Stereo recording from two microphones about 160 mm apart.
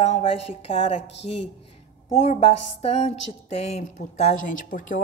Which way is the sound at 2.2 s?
40° left (ahead or behind).